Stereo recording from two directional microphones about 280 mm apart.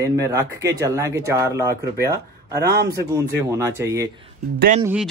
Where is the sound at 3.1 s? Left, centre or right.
Centre.